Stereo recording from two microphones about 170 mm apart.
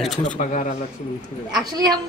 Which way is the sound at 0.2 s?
45° left (ahead or behind).